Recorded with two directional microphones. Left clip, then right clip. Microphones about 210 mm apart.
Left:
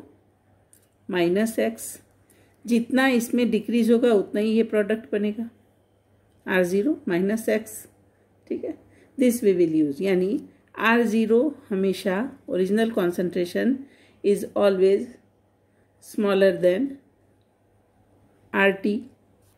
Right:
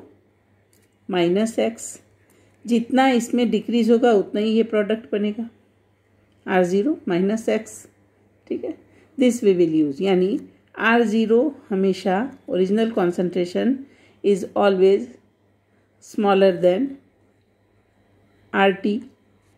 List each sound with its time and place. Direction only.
1.0 s speech: 15° right (ahead or behind)
6.4 s a woman's voice: 15° right (ahead or behind)
16.0 s speech: 15° right (ahead or behind)
18.5 s speech: 15° right (ahead or behind)